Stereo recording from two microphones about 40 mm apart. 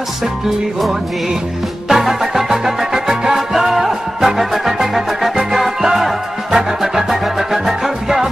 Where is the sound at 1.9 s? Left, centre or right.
Centre.